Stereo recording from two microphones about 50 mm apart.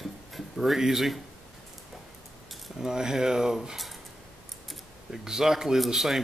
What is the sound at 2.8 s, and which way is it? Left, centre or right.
Speech, centre.